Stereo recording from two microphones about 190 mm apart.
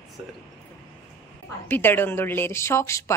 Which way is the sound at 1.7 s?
10° left (ahead or behind).